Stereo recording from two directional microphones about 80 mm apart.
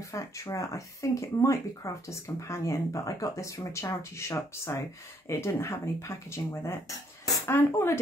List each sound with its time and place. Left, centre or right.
0.1 s speech: left